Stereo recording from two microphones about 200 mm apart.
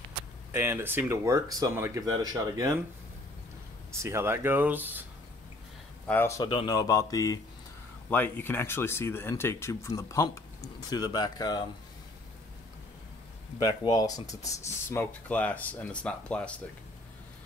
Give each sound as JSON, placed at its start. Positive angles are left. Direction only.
{"t": 0.5, "sound": "speech", "side_deg": -10}
{"t": 4.0, "sound": "speech", "side_deg": -10}
{"t": 6.0, "sound": "speech", "side_deg": 10}
{"t": 13.6, "sound": "speech", "side_deg": 20}